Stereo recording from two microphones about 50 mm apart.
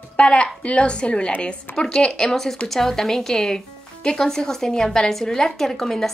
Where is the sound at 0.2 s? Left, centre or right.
Left.